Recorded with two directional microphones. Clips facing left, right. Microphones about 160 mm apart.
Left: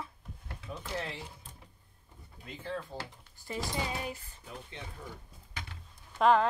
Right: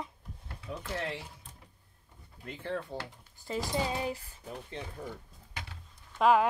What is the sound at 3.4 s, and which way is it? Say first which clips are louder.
Speech: right 3 dB; 20° right (ahead or behind).